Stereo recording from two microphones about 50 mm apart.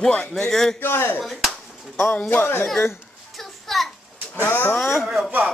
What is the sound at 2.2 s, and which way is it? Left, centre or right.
Speech, left.